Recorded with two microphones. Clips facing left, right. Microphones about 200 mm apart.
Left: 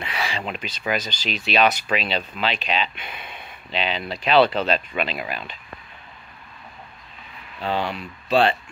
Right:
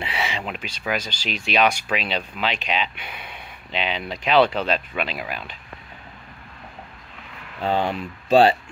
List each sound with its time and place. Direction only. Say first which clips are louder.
0.0 s a sound: right 1 dB; 25° right (ahead or behind)
0.4 s speech: left 1 dB; 5° right (ahead or behind)
7.6 s speech: right 3 dB; 45° right (ahead or behind)